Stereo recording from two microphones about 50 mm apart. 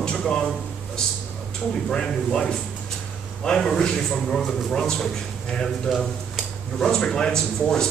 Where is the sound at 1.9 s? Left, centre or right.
Centre.